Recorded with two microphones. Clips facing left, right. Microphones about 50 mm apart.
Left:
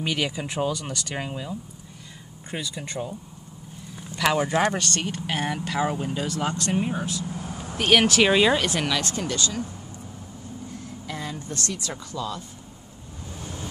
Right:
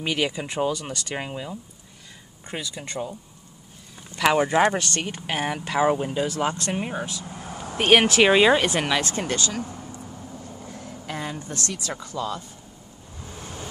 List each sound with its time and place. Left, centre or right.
0.0 s speech: centre
4.2 s speech: centre
9.1 s speech: right
10.7 s vehicle: right
11.8 s speech: centre